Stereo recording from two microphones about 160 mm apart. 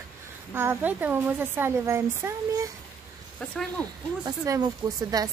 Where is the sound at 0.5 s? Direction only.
15° right (ahead or behind).